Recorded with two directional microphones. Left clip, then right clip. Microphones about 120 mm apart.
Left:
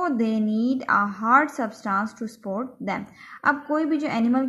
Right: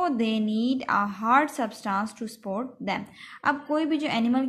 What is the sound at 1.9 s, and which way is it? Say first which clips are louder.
Speech: left 3 dB; 5° right (ahead or behind).